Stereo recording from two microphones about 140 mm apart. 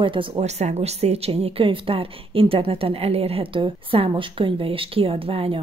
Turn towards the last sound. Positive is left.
turn(degrees=-40)  # may be behind; listen again after turning